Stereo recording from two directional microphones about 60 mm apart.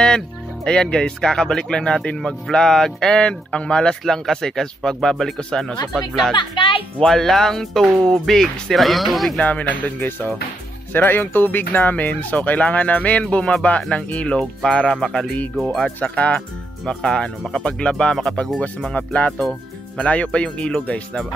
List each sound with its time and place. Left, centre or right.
0.7 s speech: centre
9.4 s speech: left
14.4 s speech: centre
16.0 s speech: left
16.8 s speech: centre
18.9 s speech: left